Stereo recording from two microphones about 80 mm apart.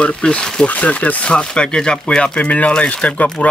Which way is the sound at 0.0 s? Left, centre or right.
Centre.